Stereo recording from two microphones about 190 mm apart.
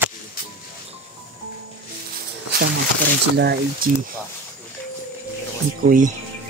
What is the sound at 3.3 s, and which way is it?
Speech, 55° right (ahead or behind).